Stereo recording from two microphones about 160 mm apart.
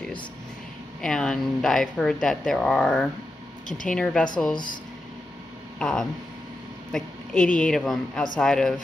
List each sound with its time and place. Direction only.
1.0 s speech: 5° left (ahead or behind)
3.6 s speech: 55° left (ahead or behind)
3.9 s speech: 5° left (ahead or behind)
5.8 s speech: 5° left (ahead or behind)